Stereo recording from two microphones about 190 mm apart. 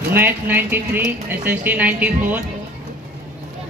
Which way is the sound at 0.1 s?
10° right (ahead or behind).